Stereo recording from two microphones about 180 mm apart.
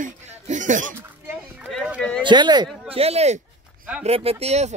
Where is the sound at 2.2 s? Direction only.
25° right (ahead or behind).